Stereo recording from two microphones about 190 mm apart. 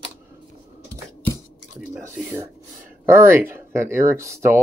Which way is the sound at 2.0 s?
15° right (ahead or behind).